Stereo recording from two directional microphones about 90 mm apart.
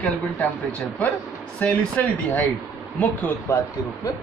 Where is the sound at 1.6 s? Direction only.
15° left (ahead or behind).